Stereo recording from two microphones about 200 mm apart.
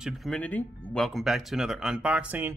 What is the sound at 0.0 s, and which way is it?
Speech, centre (ahead or behind).